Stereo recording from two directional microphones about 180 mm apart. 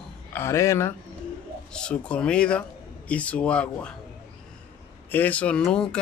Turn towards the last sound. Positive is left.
turn(degrees=5)  # may be behind; listen again after turning